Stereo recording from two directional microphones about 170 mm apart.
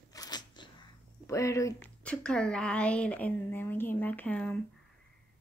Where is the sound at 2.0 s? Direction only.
5° left (ahead or behind).